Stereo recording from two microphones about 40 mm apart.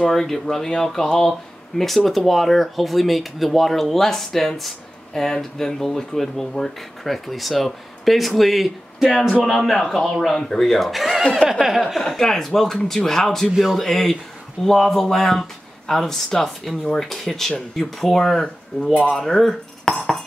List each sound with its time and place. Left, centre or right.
0.0 s speech: centre
1.8 s speech: centre
12.0 s speech: centre
13.5 s speech: centre
13.7 s speech: centre
19.1 s cutlery: centre